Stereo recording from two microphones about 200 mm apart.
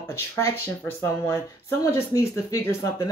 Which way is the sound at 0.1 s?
10° left (ahead or behind).